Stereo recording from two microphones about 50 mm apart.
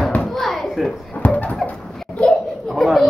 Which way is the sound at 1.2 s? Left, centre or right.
Left.